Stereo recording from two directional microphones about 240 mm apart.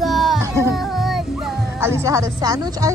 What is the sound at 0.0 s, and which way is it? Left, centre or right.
Music, centre.